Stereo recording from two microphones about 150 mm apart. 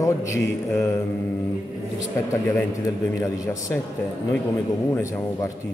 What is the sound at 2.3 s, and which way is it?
Speech, 20° left (ahead or behind).